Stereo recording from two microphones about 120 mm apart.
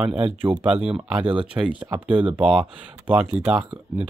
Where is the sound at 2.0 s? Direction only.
10° right (ahead or behind).